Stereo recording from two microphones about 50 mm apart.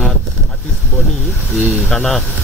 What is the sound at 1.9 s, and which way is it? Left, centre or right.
Speech, centre.